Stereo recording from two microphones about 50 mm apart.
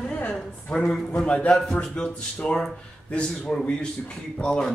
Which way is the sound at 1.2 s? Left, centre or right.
Left.